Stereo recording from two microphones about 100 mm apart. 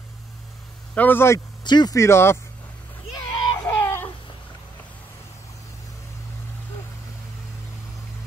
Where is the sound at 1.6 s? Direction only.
45° left (ahead or behind).